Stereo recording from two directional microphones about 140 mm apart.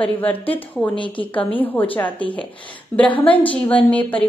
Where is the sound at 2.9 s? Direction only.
10° left (ahead or behind).